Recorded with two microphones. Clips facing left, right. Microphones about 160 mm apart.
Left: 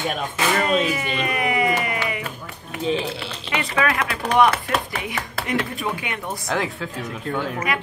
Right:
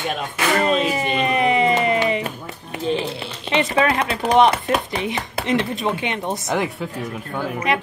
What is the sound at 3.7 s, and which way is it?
Speech, 25° right (ahead or behind).